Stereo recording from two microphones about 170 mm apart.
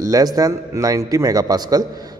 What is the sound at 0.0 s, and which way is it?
A man's voice, 20° right (ahead or behind).